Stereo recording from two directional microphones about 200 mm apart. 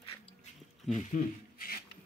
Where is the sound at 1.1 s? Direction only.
45° left (ahead or behind).